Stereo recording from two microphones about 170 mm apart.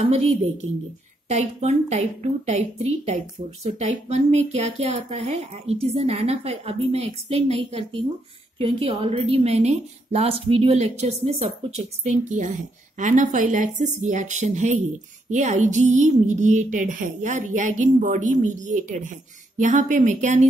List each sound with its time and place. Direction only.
1.3 s a woman's voice: 40° right (ahead or behind)